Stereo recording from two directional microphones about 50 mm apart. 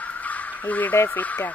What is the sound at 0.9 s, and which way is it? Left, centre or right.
Speech, left.